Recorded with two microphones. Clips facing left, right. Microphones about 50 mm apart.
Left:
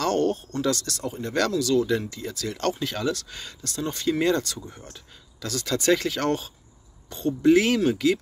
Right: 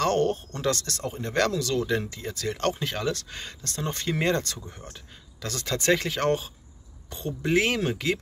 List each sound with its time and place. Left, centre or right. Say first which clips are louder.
0.0 s speech: even; right
2.0 s speech: even; right
3.6 s speech: left 4 dB; right
4.8 s speech: right 1 dB; right